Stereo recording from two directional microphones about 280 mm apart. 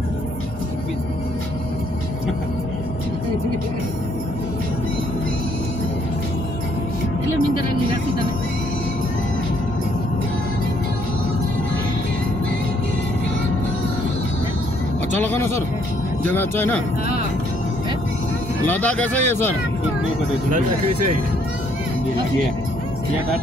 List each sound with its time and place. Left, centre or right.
15.1 s speech: centre
18.7 s speech: centre